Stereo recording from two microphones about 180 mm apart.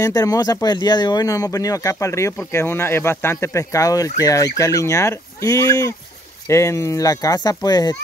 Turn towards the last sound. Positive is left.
turn(degrees=20)  # may be behind; listen again after turning